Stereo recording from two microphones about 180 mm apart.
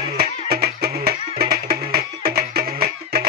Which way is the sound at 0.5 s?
60° right (ahead or behind).